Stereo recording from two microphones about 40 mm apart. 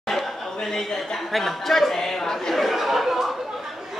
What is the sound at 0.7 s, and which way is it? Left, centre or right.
Speech, centre.